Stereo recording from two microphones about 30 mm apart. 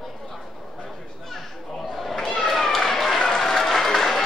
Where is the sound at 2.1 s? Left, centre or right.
Centre.